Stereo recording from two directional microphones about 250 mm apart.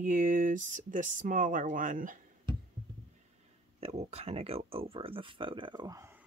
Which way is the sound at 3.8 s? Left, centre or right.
Right.